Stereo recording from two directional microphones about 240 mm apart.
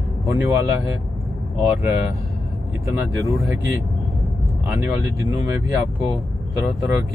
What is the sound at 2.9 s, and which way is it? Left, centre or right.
Speech, centre.